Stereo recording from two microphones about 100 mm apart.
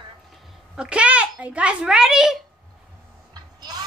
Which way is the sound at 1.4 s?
15° right (ahead or behind).